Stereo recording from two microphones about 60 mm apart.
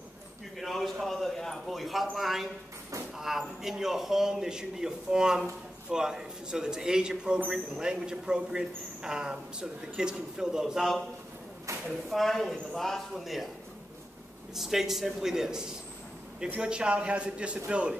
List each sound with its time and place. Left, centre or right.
0.6 s a sound: centre
1.0 s speech: centre
12.1 s speech: centre
14.5 s a man's voice: centre